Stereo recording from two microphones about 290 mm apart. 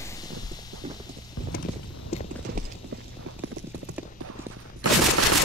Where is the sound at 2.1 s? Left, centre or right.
Left.